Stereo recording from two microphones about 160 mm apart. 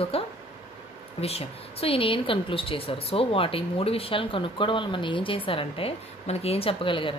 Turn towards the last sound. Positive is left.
turn(degrees=30)  # may be behind; listen again after turning